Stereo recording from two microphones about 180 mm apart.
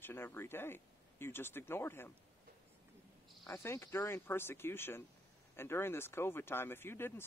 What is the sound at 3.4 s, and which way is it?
Speech, 10° left (ahead or behind).